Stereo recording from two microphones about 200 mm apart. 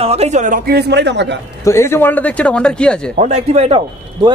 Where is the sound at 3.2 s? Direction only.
35° right (ahead or behind).